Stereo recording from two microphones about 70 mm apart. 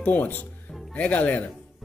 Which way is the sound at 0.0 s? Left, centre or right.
Left.